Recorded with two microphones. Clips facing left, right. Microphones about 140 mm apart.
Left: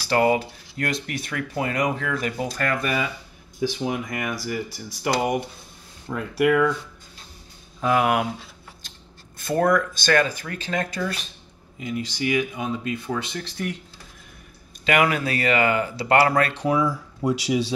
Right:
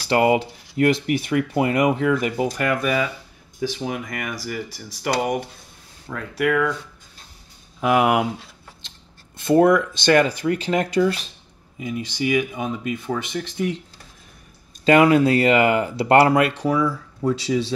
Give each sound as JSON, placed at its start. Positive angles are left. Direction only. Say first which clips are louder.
{"t": 0.1, "sound": "speech", "louder": "right 2 dB", "side_deg": -20}
{"t": 2.8, "sound": "speech", "louder": "right 4 dB", "side_deg": 0}
{"t": 7.8, "sound": "speech", "louder": "right 3 dB", "side_deg": -20}
{"t": 9.4, "sound": "speech", "louder": "right 5 dB", "side_deg": -20}
{"t": 14.9, "sound": "speech", "louder": "right 7 dB", "side_deg": -25}
{"t": 16.6, "sound": "speech", "louder": "right 1 dB", "side_deg": 0}